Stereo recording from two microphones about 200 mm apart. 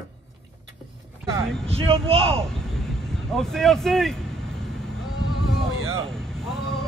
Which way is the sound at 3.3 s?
Centre (ahead or behind).